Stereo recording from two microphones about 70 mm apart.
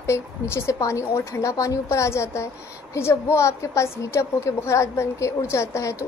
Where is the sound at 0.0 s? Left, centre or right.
Left.